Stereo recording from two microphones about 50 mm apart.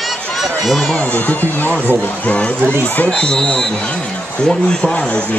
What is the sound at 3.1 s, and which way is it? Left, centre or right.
Speech, centre.